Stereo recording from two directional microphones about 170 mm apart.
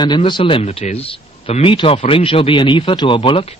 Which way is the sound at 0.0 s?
25° left (ahead or behind).